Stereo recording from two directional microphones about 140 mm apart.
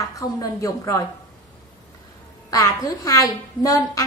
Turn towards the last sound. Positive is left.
turn(degrees=25)  # may be behind; listen again after turning